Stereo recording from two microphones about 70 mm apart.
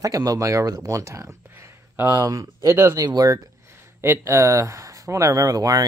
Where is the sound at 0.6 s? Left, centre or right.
Right.